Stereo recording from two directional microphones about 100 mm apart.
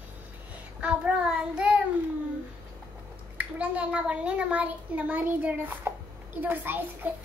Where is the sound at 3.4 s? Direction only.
15° right (ahead or behind).